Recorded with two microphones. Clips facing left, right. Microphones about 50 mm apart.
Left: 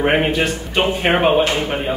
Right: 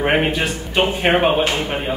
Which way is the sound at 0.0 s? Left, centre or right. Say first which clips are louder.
Left 1 dB; centre.